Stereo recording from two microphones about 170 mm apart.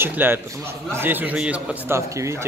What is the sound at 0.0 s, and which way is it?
Speech, 10° right (ahead or behind).